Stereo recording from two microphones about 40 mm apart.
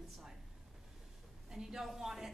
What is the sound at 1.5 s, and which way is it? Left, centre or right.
Speech, centre.